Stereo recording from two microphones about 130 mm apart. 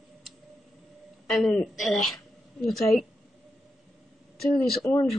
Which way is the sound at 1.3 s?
5° left (ahead or behind).